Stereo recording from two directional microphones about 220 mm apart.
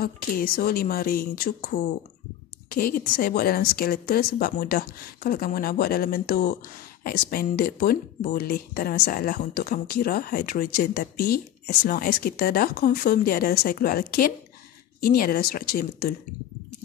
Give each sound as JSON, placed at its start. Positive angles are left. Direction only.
{"t": 0.0, "sound": "a woman's voice", "side_deg": 40}